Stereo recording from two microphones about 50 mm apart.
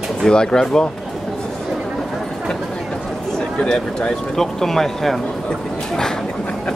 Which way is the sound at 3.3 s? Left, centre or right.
Centre.